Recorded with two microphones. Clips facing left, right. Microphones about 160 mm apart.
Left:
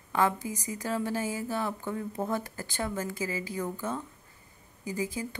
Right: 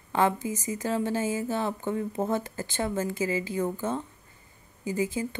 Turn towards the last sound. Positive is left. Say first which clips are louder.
# right 4 dB
turn(degrees=-25)  # may be behind; listen again after turning